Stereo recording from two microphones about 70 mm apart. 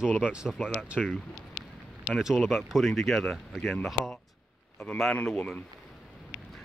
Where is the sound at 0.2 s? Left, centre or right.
Centre.